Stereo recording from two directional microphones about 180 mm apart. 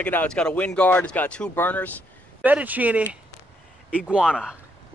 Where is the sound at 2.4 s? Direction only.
10° right (ahead or behind).